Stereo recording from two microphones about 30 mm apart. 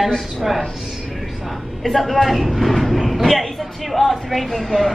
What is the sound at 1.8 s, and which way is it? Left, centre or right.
Speech, centre.